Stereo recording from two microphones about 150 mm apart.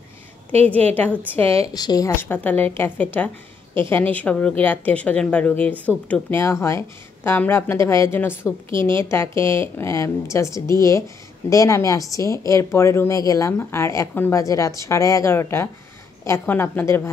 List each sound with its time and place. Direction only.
0.9 s a woman's voice: 10° left (ahead or behind)